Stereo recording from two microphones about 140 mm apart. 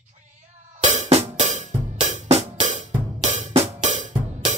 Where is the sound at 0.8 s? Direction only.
55° right (ahead or behind).